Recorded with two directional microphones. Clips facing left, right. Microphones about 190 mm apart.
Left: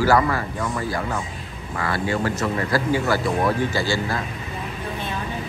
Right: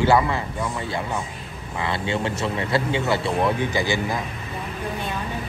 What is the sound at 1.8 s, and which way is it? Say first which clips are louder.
Speech: left 2 dB; 25° right (ahead or behind).